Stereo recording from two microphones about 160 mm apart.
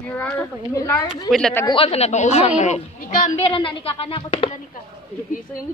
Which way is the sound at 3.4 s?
35° left (ahead or behind).